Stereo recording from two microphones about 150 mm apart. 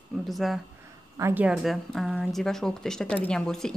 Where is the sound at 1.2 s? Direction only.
20° right (ahead or behind).